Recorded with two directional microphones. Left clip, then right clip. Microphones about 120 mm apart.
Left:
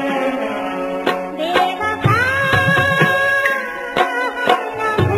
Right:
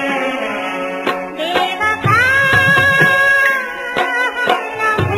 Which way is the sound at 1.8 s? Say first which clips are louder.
Right 4 dB; 45° right (ahead or behind).